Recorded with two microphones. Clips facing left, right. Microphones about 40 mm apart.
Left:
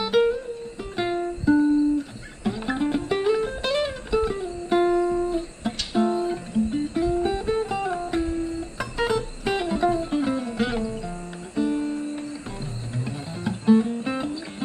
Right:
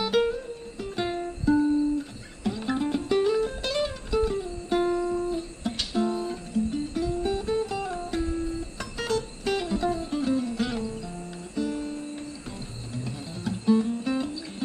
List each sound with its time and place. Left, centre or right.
0.0 s music: centre